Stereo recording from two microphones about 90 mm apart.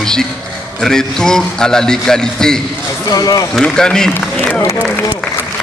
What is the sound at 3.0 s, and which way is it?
Speech, 45° left (ahead or behind).